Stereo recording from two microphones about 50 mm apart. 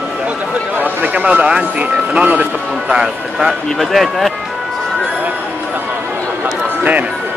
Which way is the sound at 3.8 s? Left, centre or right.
Centre.